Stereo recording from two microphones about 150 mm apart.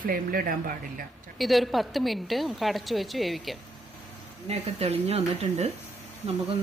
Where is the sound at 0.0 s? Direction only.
75° right (ahead or behind).